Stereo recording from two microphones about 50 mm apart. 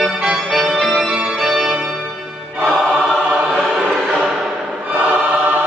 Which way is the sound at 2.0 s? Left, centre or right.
Right.